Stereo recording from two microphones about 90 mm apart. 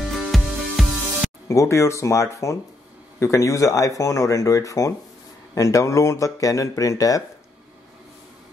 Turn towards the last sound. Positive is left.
turn(degrees=40)  # may be behind; listen again after turning